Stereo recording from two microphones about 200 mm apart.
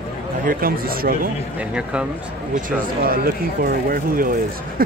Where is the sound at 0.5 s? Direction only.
45° right (ahead or behind).